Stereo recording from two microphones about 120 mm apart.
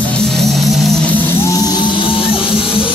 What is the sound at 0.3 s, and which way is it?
Music, centre (ahead or behind).